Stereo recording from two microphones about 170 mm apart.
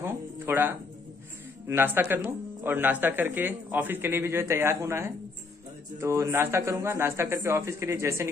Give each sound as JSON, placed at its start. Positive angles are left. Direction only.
{"t": 0.0, "sound": "music", "side_deg": -10}
{"t": 1.7, "sound": "a man's voice", "side_deg": -10}